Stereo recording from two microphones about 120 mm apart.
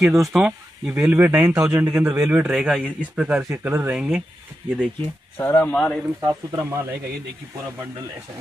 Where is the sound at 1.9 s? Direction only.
10° right (ahead or behind).